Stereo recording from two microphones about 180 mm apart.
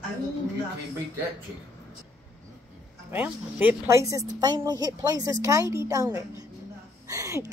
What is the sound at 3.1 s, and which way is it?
A woman's voice, 10° right (ahead or behind).